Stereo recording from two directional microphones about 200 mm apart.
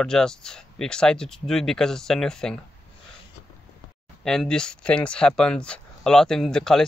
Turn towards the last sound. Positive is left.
turn(degrees=5)  # may be behind; listen again after turning